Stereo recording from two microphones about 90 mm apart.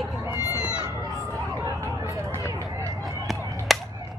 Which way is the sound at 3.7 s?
Centre (ahead or behind).